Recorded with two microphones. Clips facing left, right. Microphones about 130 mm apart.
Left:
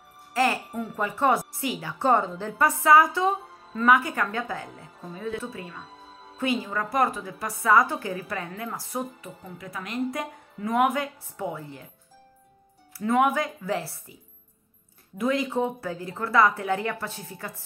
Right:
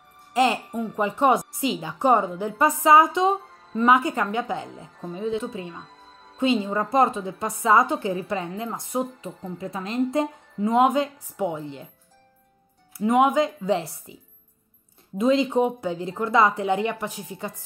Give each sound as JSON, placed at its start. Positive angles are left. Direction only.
{"t": 0.3, "sound": "music", "side_deg": -20}
{"t": 0.7, "sound": "a woman's voice", "side_deg": -20}
{"t": 5.9, "sound": "music", "side_deg": 5}
{"t": 6.3, "sound": "a woman's voice", "side_deg": -25}
{"t": 12.9, "sound": "a woman's voice", "side_deg": -20}
{"t": 15.1, "sound": "a woman's voice", "side_deg": -25}